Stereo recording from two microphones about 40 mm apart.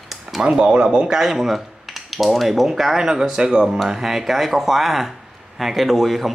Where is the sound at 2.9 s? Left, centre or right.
Centre.